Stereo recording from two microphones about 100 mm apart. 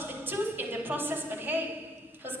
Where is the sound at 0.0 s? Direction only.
20° right (ahead or behind).